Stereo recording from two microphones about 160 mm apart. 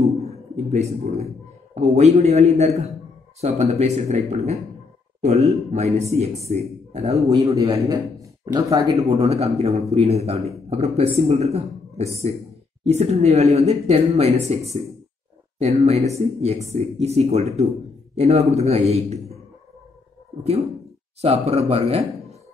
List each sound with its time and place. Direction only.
0.2 s a sound: 40° right (ahead or behind)
1.8 s a man's voice: 45° right (ahead or behind)
7.2 s a man's voice: 20° right (ahead or behind)
9.2 s a man's voice: 40° right (ahead or behind)
15.6 s a man's voice: 40° right (ahead or behind)
21.2 s speech: 40° right (ahead or behind)